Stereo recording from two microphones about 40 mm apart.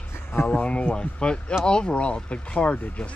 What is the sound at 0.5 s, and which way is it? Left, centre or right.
Speech, left.